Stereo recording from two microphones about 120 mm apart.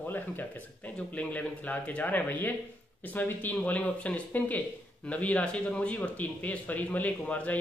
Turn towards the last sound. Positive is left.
turn(degrees=10)  # may be behind; listen again after turning